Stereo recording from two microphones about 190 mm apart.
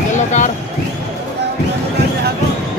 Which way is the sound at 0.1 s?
40° left (ahead or behind).